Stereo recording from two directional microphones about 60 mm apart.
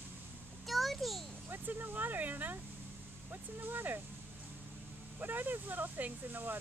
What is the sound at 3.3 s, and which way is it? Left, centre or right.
Vehicle, right.